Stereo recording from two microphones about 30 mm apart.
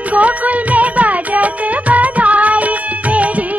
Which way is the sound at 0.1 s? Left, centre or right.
Right.